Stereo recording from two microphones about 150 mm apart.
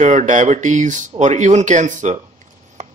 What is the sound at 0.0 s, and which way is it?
Speech, 55° right (ahead or behind).